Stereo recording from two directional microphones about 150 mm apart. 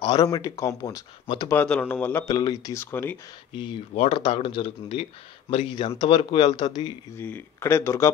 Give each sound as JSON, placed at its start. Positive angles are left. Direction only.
{"t": 0.0, "sound": "speech", "side_deg": 30}
{"t": 1.2, "sound": "speech", "side_deg": 35}
{"t": 1.5, "sound": "speech", "side_deg": 10}
{"t": 2.2, "sound": "speech", "side_deg": 25}
{"t": 3.9, "sound": "speech", "side_deg": 45}
{"t": 5.9, "sound": "speech", "side_deg": 30}
{"t": 7.2, "sound": "speech", "side_deg": 15}